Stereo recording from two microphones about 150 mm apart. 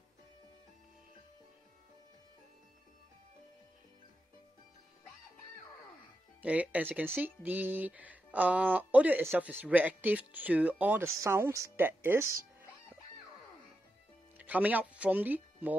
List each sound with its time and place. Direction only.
6.4 s speech: 10° right (ahead or behind)
14.4 s speech: 10° right (ahead or behind)